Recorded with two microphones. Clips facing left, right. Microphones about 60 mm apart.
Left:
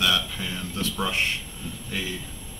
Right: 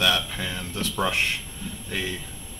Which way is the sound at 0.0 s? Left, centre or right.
Right.